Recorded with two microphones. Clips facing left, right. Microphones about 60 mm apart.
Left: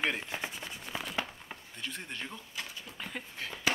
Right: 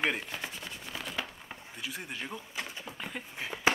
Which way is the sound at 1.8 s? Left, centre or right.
Centre.